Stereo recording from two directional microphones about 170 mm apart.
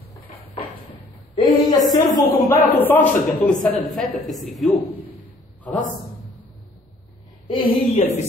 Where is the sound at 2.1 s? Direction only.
20° left (ahead or behind).